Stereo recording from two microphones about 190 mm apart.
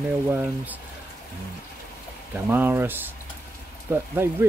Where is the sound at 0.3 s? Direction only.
10° right (ahead or behind).